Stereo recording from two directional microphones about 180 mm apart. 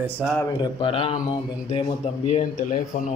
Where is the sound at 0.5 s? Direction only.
25° left (ahead or behind).